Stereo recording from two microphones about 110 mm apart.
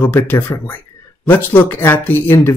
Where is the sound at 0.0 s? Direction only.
20° left (ahead or behind).